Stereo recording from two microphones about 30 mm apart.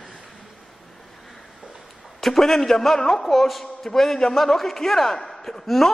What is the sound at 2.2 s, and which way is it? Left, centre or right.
A man's voice, centre.